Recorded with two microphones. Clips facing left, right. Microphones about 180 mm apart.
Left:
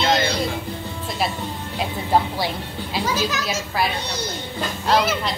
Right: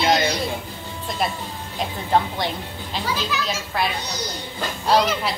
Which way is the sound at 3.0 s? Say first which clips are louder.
Left 3 dB; 45° left (ahead or behind).